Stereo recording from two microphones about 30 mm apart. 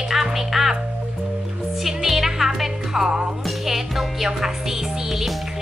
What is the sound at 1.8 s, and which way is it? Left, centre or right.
Music, centre.